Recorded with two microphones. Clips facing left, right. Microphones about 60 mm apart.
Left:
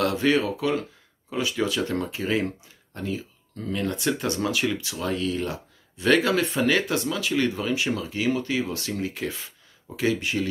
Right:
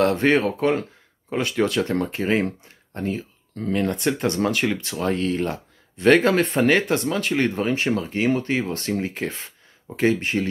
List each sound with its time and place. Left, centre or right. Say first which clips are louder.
0.0 s speech: right 4 dB; right